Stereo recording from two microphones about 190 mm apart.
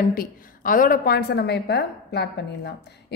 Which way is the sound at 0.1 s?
50° left (ahead or behind).